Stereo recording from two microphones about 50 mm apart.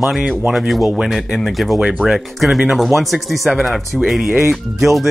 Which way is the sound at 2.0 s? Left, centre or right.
Left.